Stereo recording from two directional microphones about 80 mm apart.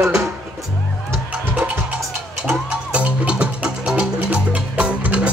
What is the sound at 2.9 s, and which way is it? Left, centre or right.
Music, centre.